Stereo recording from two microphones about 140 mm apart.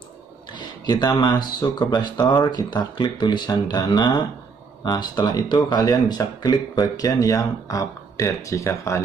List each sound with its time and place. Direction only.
0.6 s speech: 30° left (ahead or behind)